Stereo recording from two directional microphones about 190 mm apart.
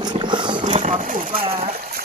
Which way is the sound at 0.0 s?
25° right (ahead or behind).